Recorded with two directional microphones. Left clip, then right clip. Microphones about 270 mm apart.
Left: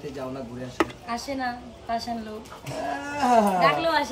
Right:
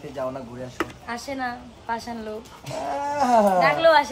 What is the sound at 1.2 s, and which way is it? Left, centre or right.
Speech, right.